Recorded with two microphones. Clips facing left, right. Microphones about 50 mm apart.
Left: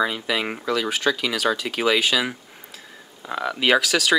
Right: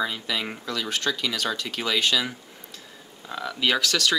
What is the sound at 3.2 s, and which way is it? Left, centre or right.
Speech, left.